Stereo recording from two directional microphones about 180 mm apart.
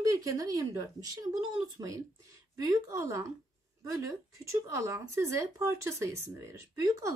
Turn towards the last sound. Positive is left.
turn(degrees=-20)  # may be behind; listen again after turning